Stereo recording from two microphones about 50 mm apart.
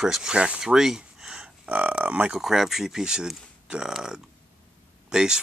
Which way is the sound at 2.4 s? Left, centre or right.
Centre.